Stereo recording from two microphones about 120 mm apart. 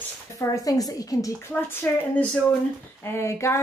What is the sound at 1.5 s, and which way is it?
A woman's voice, 15° left (ahead or behind).